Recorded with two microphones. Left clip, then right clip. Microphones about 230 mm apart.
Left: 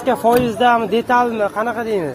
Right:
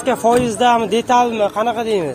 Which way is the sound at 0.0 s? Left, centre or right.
Centre.